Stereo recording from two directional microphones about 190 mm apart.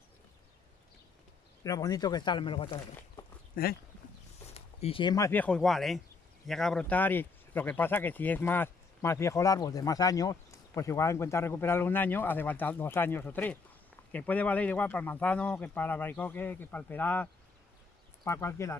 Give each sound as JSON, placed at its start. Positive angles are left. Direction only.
{"t": 1.6, "sound": "speech", "side_deg": 20}
{"t": 3.6, "sound": "speech", "side_deg": 50}
{"t": 4.5, "sound": "speech", "side_deg": 30}